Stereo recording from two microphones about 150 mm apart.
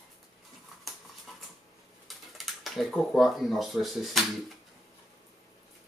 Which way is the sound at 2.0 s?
Centre (ahead or behind).